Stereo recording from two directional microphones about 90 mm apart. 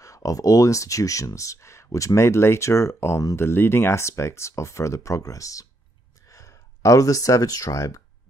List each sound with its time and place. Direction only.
0.0 s speech: 40° left (ahead or behind)